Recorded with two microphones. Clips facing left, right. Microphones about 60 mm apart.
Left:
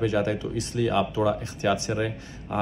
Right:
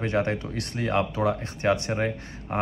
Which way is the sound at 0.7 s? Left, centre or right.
Right.